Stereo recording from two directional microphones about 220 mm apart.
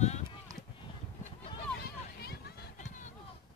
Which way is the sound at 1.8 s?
45° left (ahead or behind).